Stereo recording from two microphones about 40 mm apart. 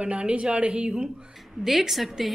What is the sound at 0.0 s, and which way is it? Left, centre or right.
Speech, right.